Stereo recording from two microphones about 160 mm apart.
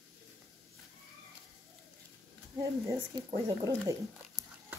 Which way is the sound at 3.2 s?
25° right (ahead or behind).